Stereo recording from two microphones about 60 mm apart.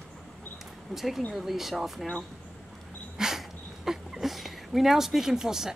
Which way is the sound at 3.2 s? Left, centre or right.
Centre.